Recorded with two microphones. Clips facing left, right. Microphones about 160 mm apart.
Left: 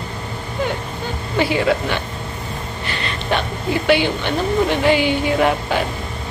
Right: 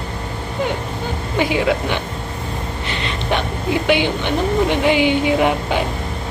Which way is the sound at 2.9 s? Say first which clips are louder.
Even; 20° right (ahead or behind).